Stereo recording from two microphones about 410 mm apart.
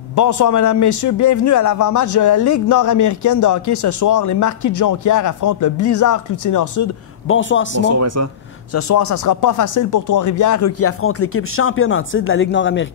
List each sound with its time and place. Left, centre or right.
0.1 s a man's voice: left
7.2 s a man's voice: left
7.8 s speech: right
8.7 s speech: left